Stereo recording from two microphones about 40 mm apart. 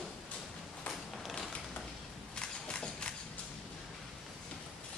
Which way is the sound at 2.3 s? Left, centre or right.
Left.